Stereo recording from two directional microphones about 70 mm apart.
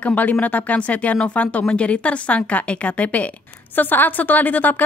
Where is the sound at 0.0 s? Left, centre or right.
Left.